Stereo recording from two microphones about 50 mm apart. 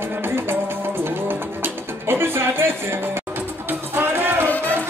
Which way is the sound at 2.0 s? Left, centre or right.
Right.